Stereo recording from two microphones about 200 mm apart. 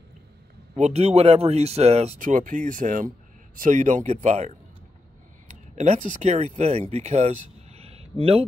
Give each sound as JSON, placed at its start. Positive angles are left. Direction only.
{"t": 0.7, "sound": "speech", "side_deg": -35}
{"t": 5.5, "sound": "a sound", "side_deg": -35}
{"t": 6.0, "sound": "speech", "side_deg": -35}